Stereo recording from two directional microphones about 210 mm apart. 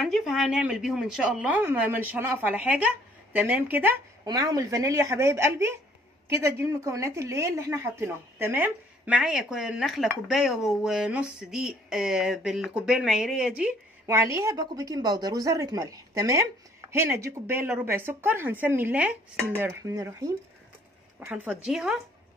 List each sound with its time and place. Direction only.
0.0 s a woman's voice: centre (ahead or behind)